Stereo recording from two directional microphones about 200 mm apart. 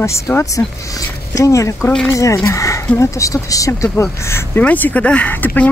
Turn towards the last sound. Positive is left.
turn(degrees=5)  # may be behind; listen again after turning